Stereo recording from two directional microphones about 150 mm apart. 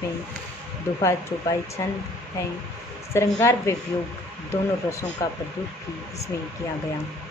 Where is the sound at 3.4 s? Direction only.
20° left (ahead or behind).